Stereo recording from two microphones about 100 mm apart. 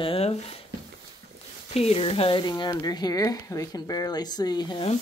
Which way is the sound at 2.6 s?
40° left (ahead or behind).